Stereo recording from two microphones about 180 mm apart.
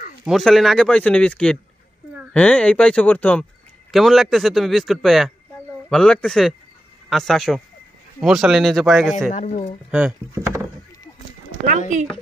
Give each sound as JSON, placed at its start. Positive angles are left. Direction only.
{"t": 0.2, "sound": "a man's voice", "side_deg": 0}
{"t": 9.3, "sound": "speech", "side_deg": 40}
{"t": 9.8, "sound": "a man's voice", "side_deg": -5}